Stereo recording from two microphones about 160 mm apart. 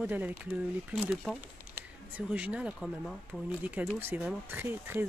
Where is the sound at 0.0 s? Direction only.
10° right (ahead or behind).